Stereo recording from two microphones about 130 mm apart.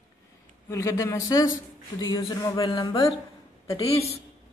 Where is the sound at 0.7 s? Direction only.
25° left (ahead or behind).